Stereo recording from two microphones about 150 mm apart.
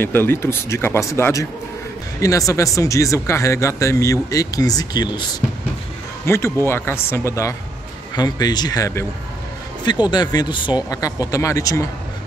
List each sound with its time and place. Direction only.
0.0 s speech: 15° left (ahead or behind)
6.2 s speech: 15° left (ahead or behind)
10.0 s speech: 25° left (ahead or behind)